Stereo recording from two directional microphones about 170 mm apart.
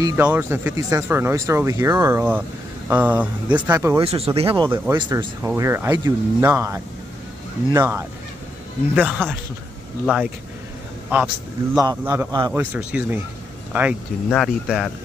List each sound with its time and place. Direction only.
0.0 s speech: 15° right (ahead or behind)
4.0 s speech: 35° right (ahead or behind)
4.6 s speech: 20° right (ahead or behind)
12.3 s speech: 25° right (ahead or behind)
12.5 s speech: 10° right (ahead or behind)